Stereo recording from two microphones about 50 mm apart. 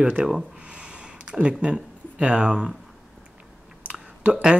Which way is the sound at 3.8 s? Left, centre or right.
Right.